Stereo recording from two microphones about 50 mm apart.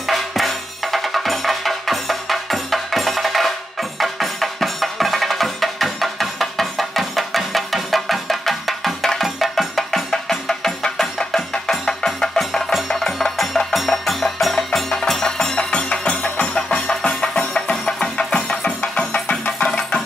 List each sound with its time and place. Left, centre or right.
0.0 s music: centre; by 16.6 s left
16.6 s music: centre